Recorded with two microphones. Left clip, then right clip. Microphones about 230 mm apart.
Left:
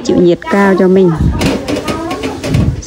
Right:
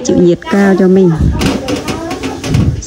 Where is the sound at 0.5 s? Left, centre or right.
Centre.